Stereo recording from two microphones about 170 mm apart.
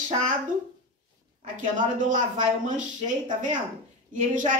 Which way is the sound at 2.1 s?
45° right (ahead or behind).